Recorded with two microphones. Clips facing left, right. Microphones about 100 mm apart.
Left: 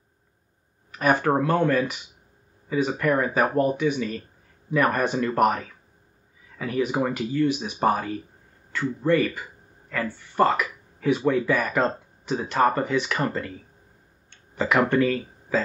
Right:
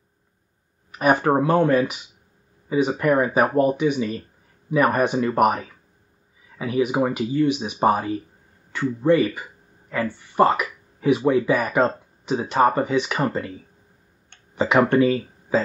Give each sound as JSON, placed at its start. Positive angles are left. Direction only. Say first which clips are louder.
{"t": 0.9, "sound": "speech", "louder": "right 3 dB", "side_deg": -15}
{"t": 14.5, "sound": "speech", "louder": "right 3 dB", "side_deg": -20}